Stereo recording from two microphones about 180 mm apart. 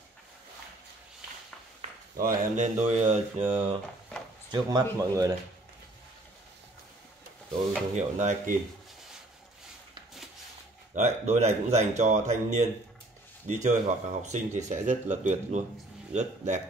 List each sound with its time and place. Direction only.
1.8 s speech: 50° right (ahead or behind)
4.5 s speech: 20° right (ahead or behind)
7.9 s speech: 40° right (ahead or behind)
11.0 s speech: 40° right (ahead or behind)